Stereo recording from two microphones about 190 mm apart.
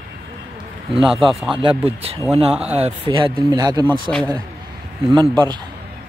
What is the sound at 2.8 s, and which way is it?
Speech, 25° right (ahead or behind).